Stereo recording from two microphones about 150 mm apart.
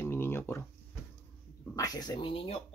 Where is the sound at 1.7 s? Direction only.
25° left (ahead or behind).